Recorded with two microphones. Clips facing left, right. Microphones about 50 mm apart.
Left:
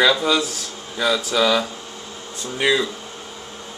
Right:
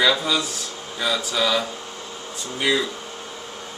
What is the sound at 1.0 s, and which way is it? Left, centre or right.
Speech, left.